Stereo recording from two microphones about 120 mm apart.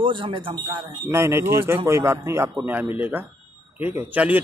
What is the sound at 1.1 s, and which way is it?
A man's voice, 20° right (ahead or behind).